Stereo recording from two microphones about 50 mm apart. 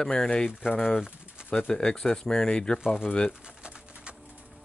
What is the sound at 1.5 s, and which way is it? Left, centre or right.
Speech, left.